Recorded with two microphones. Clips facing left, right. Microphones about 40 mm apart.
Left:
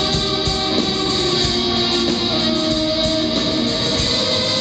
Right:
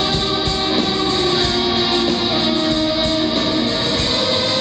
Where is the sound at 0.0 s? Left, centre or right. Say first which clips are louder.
Right 1 dB; centre.